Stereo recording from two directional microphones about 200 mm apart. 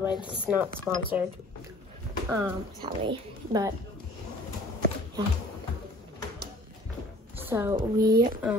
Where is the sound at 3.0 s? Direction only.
20° right (ahead or behind).